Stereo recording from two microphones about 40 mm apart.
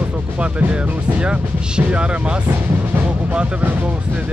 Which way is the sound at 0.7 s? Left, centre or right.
Right.